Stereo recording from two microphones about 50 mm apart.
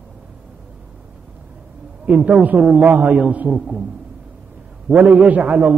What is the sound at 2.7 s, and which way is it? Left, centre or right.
Speech, right.